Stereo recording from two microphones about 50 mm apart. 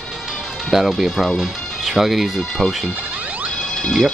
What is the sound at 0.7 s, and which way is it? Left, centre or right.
Speech, centre.